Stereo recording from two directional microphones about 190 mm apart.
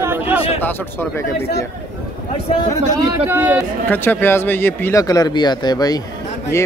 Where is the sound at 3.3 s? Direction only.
10° right (ahead or behind).